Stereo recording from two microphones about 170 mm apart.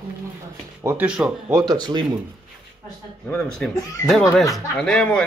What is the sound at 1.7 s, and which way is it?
Speech, 25° right (ahead or behind).